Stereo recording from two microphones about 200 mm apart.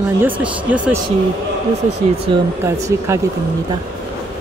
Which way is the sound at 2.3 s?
25° right (ahead or behind).